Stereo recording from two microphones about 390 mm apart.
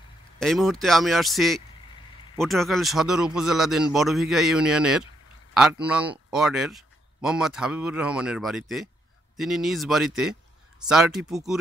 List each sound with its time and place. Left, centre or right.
0.4 s a man's voice: centre